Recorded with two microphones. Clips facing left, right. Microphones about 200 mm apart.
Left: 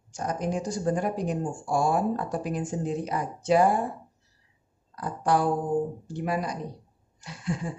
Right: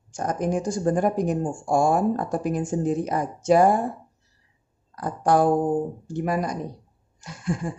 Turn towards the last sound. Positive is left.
turn(degrees=-45)  # may be behind; listen again after turning